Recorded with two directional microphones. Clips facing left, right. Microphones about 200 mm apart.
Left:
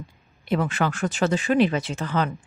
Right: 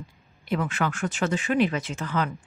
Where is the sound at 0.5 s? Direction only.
35° left (ahead or behind).